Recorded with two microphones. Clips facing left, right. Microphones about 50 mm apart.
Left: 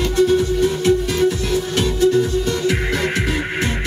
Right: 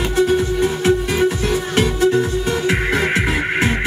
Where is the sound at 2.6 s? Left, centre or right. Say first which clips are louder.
Right 2 dB; centre.